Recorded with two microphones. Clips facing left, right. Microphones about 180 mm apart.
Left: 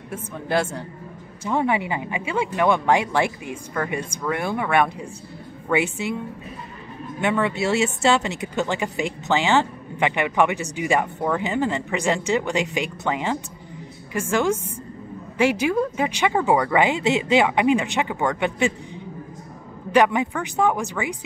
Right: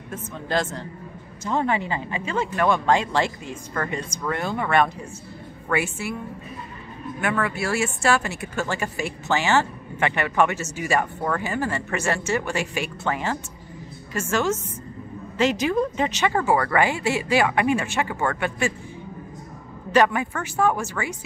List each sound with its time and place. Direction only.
0.1 s a woman's voice: 10° left (ahead or behind)
7.2 s speech: 20° left (ahead or behind)
19.9 s speech: 15° left (ahead or behind)